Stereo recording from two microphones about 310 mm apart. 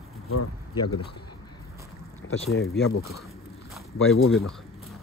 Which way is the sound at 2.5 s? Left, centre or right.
Left.